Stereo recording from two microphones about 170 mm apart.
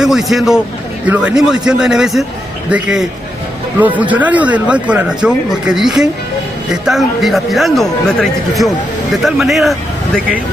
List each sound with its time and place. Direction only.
0.0 s a man's voice: centre (ahead or behind)